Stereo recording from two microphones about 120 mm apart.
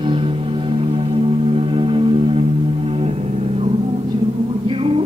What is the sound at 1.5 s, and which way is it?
Music, 45° right (ahead or behind).